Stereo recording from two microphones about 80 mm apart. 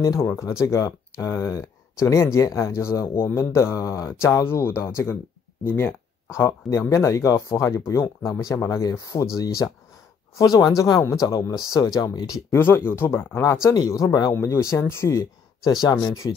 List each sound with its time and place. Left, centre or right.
0.0 s speech: left
12.5 s speech: left
13.7 s speech: left
14.3 s speech: left
15.6 s speech: left